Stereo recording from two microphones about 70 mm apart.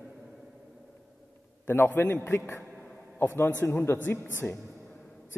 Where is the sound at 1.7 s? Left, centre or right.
Left.